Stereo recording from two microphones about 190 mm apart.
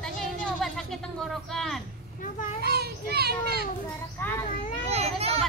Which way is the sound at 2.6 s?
60° right (ahead or behind).